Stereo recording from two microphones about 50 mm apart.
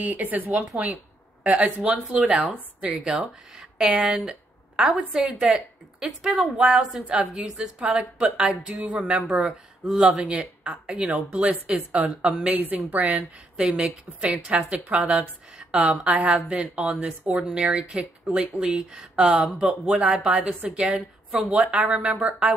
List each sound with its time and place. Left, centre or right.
0.0 s a woman's voice: right
2.8 s a woman's voice: centre
12.4 s a woman's voice: right